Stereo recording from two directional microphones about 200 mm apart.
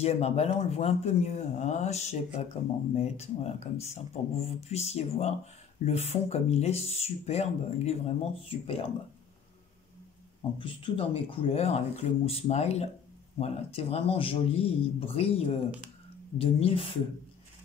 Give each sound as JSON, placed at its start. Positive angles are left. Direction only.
{"t": 0.0, "sound": "speech", "side_deg": 30}
{"t": 10.6, "sound": "speech", "side_deg": 25}